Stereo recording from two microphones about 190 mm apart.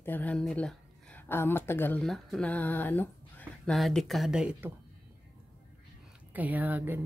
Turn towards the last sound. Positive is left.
turn(degrees=-10)  # may be behind; listen again after turning